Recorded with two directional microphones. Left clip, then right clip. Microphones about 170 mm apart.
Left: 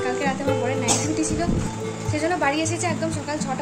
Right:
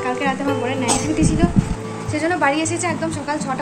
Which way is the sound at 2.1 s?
15° left (ahead or behind).